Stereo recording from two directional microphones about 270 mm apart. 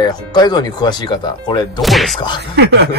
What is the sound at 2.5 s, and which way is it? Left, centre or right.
Speech, right.